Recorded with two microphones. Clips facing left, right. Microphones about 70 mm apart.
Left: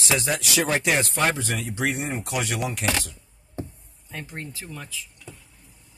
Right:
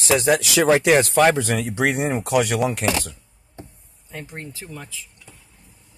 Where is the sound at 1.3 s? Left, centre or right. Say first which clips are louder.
Right 7 dB; right.